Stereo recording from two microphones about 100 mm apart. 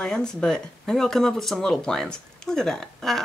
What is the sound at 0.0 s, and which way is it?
Speech, 10° left (ahead or behind).